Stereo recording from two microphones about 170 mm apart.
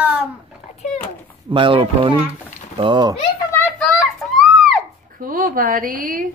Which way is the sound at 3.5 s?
5° left (ahead or behind).